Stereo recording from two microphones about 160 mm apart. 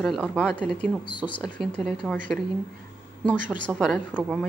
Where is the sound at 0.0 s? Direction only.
5° left (ahead or behind).